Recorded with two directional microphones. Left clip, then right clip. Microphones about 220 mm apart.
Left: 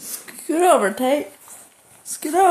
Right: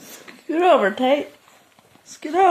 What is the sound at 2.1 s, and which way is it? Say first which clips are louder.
Horse: left 1 dB; 10° left (ahead or behind).